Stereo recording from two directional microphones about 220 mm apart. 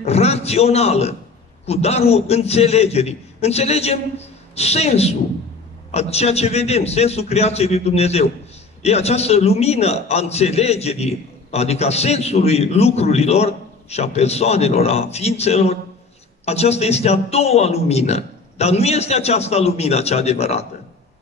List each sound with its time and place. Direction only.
0.0 s a man's voice: 30° left (ahead or behind)